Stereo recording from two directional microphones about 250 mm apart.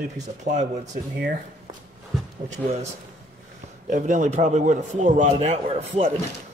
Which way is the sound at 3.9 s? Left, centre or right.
Right.